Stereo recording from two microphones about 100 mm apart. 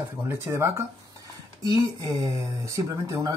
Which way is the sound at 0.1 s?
25° right (ahead or behind).